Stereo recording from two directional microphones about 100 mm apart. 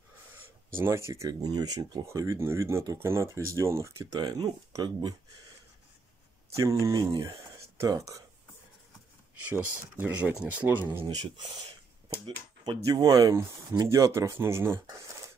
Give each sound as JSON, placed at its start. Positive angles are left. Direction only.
{"t": 0.7, "sound": "speech", "side_deg": -25}
{"t": 2.0, "sound": "speech", "side_deg": -30}
{"t": 4.0, "sound": "speech", "side_deg": -40}
{"t": 6.5, "sound": "speech", "side_deg": -30}
{"t": 7.2, "sound": "a sound", "side_deg": -30}
{"t": 9.5, "sound": "speech", "side_deg": -20}
{"t": 12.8, "sound": "speech", "side_deg": -35}